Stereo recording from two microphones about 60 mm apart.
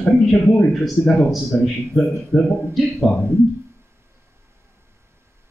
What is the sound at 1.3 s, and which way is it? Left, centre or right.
Speech, centre.